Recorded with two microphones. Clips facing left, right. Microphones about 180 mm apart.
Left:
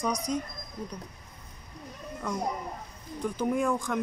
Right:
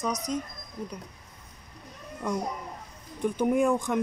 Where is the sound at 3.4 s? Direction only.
20° right (ahead or behind).